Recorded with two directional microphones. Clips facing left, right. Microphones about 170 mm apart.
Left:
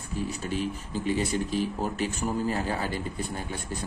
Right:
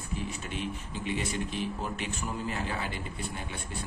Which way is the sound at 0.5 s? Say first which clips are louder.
Left 7 dB; 35° left (ahead or behind).